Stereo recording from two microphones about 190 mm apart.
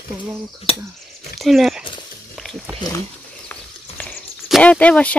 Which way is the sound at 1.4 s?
Centre (ahead or behind).